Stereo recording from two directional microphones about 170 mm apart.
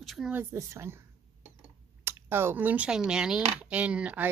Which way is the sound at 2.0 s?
15° right (ahead or behind).